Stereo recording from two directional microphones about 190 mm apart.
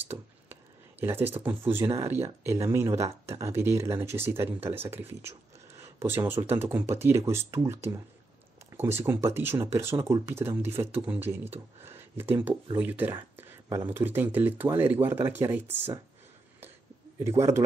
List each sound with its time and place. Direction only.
0.1 s a sound: 10° right (ahead or behind)
2.0 s speech: 15° right (ahead or behind)
8.9 s speech: 15° right (ahead or behind)